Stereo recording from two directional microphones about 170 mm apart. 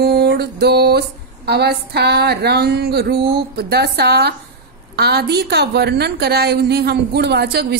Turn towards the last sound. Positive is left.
turn(degrees=-70)  # may be behind; listen again after turning